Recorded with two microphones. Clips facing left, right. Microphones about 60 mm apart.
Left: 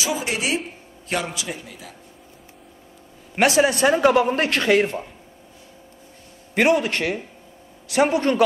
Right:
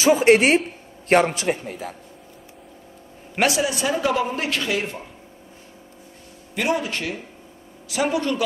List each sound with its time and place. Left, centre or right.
0.1 s speech: right
1.0 s a man's voice: right
3.4 s speech: left
6.5 s a man's voice: left